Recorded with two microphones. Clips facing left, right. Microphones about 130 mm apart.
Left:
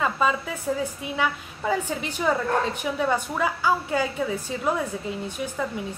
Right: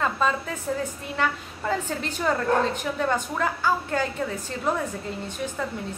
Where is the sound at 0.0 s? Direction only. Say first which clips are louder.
Left 1 dB; 5° left (ahead or behind).